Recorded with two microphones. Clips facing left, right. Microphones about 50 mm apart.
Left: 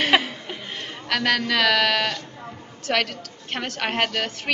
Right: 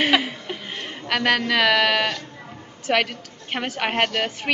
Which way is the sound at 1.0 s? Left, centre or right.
Centre.